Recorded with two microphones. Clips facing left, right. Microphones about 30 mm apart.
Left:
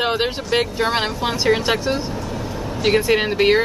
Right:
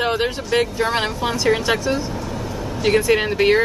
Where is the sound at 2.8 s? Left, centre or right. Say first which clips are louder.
Even; centre.